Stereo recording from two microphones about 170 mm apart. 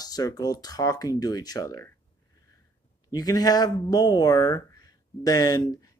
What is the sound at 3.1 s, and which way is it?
Speech, 20° left (ahead or behind).